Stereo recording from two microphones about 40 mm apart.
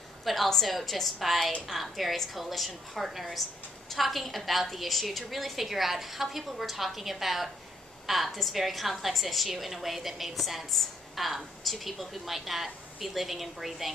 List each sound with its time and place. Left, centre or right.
0.2 s a woman's voice: centre